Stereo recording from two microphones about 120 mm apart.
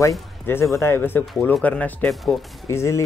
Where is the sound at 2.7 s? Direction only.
25° left (ahead or behind).